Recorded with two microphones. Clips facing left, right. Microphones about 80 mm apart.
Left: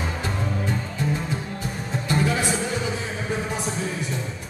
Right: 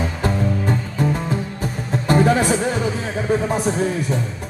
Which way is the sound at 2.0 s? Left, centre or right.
Right.